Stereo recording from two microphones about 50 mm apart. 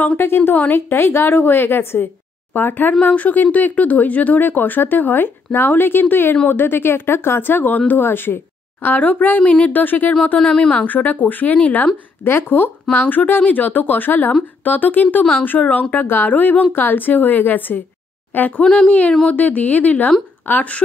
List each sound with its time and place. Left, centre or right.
0.2 s speech: left
8.0 s speech: left
9.4 s a woman's voice: left
9.7 s speech: left
10.4 s speech: centre
10.9 s speech: left
12.3 s speech: left
12.9 s speech: left
18.6 s speech: centre
18.9 s a woman's voice: left